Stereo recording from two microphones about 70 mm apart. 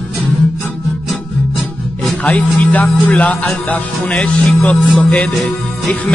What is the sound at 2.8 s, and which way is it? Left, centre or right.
Music, centre.